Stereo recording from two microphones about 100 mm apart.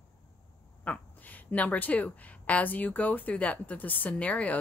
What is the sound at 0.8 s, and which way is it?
Speech, 15° left (ahead or behind).